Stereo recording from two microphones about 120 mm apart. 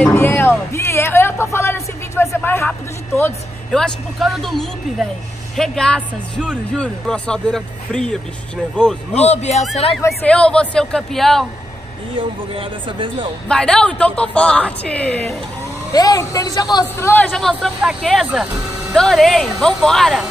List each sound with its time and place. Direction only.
0.0 s a sound: 20° left (ahead or behind)
3.7 s a man's voice: 5° left (ahead or behind)
9.1 s speech: 70° left (ahead or behind)
10.2 s a woman's voice: 10° left (ahead or behind)
12.2 s speech: 45° right (ahead or behind)
13.5 s a woman's voice: 5° left (ahead or behind)
15.9 s speech: 30° left (ahead or behind)
17.0 s a woman's voice: 15° left (ahead or behind)
17.3 s a man's voice: 5° left (ahead or behind)
18.9 s a man's voice: 5° left (ahead or behind)